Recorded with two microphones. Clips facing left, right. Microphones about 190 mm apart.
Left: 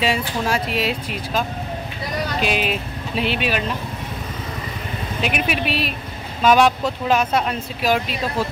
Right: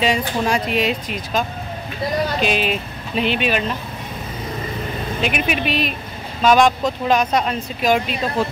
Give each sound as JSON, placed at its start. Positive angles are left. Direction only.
{"t": 0.0, "sound": "speech", "side_deg": 0}
{"t": 2.4, "sound": "speech", "side_deg": 5}
{"t": 5.2, "sound": "speech", "side_deg": 0}